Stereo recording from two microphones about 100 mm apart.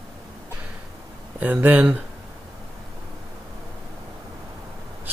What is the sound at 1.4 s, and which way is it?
Speech, 15° right (ahead or behind).